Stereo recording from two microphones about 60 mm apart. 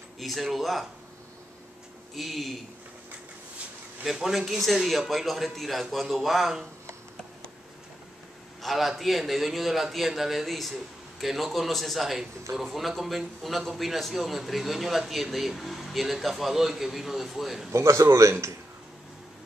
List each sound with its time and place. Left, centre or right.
0.2 s a man's voice: centre
2.1 s a man's voice: centre
4.0 s a man's voice: centre
8.6 s a man's voice: centre
17.7 s a man's voice: right